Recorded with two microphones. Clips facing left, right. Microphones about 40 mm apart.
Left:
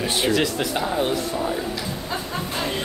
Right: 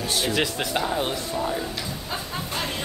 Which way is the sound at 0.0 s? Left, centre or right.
Left.